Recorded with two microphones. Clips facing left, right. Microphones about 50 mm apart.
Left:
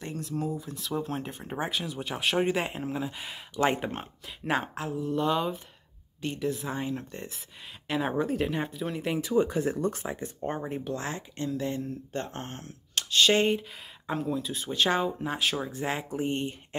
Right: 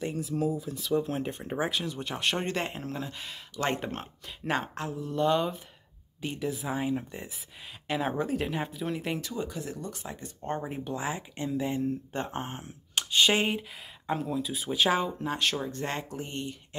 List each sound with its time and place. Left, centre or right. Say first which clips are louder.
0.0 s speech: right 3 dB; centre
9.3 s speech: left 9 dB; left
10.0 s speech: left 6 dB; centre
10.5 s speech: right 2 dB; centre
16.2 s speech: left 6 dB; left